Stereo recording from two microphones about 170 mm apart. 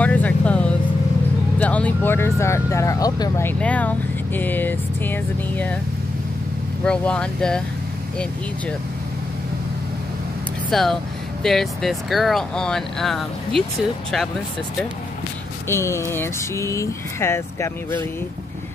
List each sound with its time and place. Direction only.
0.0 s vehicle: 10° left (ahead or behind)
1.6 s speech: 10° left (ahead or behind)
6.8 s speech: 5° left (ahead or behind)
10.7 s speech: centre (ahead or behind)
15.7 s speech: 15° left (ahead or behind)